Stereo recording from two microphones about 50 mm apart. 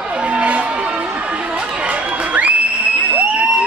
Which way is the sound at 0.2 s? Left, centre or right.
Right.